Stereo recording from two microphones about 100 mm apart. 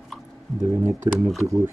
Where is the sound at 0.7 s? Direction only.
25° right (ahead or behind).